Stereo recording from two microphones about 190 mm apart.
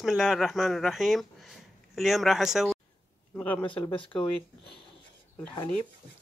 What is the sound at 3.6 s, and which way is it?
Speech, 25° left (ahead or behind).